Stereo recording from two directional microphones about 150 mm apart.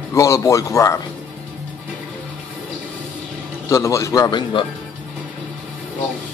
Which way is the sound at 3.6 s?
20° left (ahead or behind).